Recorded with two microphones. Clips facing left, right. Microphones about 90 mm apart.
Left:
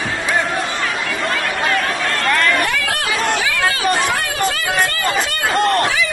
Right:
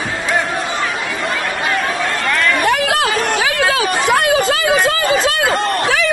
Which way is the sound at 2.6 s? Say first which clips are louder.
Right 6 dB; 70° right (ahead or behind).